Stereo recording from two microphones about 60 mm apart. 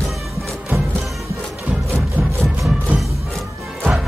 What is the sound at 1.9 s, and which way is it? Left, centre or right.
Music, centre.